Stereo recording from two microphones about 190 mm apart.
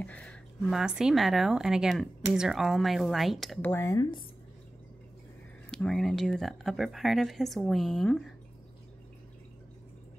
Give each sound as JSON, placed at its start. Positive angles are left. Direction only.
{"t": 0.0, "sound": "speech", "side_deg": 5}
{"t": 3.6, "sound": "speech", "side_deg": 10}
{"t": 5.7, "sound": "speech", "side_deg": 5}